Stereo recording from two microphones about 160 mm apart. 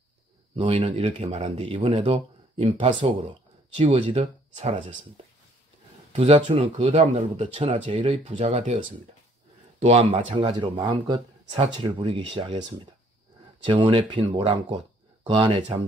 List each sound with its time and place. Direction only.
0.6 s speech: 30° right (ahead or behind)
4.7 s speech: 30° right (ahead or behind)
10.3 s speech: 30° right (ahead or behind)